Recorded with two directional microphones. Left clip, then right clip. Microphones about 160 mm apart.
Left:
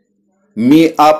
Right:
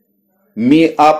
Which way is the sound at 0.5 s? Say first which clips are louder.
Left 1 dB; 30° left (ahead or behind).